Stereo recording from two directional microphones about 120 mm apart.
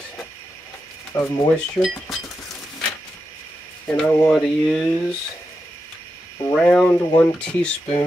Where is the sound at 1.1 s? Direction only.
25° left (ahead or behind).